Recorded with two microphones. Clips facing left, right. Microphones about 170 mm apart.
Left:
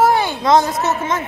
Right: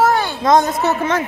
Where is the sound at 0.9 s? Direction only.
75° right (ahead or behind).